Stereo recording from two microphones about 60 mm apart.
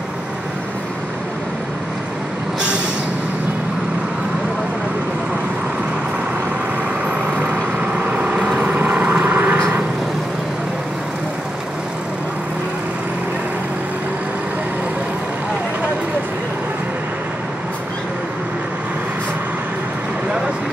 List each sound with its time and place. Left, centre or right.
7.1 s vehicle: right